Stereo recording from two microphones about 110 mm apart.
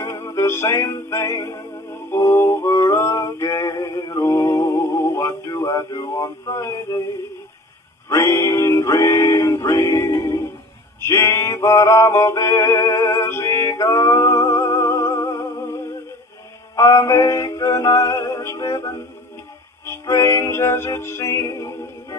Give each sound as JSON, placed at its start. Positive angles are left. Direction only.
{"t": 0.0, "sound": "music", "side_deg": 25}
{"t": 8.1, "sound": "music", "side_deg": 25}